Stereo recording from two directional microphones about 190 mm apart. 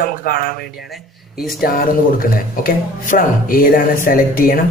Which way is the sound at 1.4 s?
50° left (ahead or behind).